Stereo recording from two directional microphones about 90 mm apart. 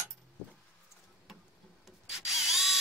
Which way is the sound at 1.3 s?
5° right (ahead or behind).